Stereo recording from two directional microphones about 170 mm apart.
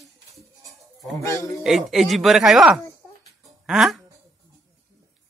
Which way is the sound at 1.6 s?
Centre (ahead or behind).